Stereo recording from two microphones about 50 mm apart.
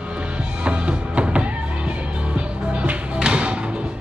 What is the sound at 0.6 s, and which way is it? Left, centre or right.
Music, right.